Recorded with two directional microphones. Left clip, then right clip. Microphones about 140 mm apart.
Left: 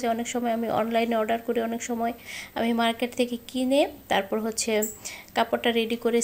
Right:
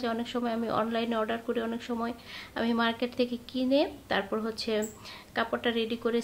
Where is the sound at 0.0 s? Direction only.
15° left (ahead or behind).